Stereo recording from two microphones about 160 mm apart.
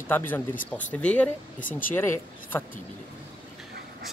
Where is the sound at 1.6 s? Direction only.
55° left (ahead or behind).